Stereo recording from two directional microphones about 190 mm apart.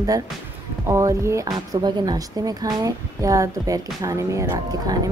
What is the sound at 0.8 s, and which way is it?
Speech, 15° right (ahead or behind).